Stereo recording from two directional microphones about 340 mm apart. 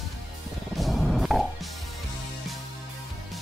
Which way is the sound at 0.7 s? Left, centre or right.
Centre.